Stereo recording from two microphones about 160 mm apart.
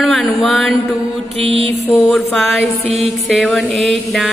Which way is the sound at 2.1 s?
Centre (ahead or behind).